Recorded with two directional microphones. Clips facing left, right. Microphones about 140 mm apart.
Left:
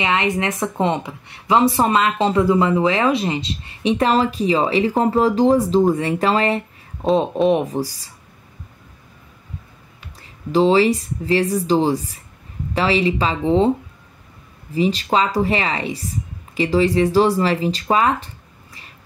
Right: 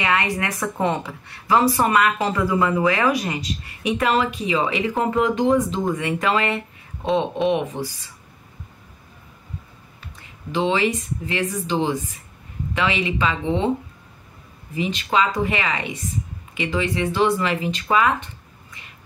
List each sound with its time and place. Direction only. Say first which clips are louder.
0.0 s speech: left 3 dB; 20° left (ahead or behind); by 8.1 s 35° left (ahead or behind)
10.1 s speech: left 7 dB; 35° left (ahead or behind)
14.7 s speech: left 5 dB; 35° left (ahead or behind)